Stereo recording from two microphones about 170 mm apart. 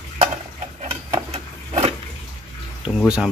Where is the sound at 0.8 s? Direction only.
35° right (ahead or behind).